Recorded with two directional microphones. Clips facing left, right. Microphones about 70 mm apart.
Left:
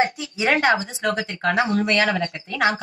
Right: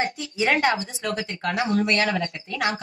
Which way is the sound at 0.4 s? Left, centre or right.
Left.